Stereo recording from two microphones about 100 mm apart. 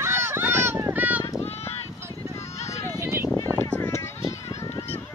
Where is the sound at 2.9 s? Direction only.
25° right (ahead or behind).